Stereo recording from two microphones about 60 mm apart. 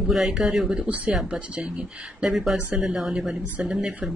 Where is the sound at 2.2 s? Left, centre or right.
Centre.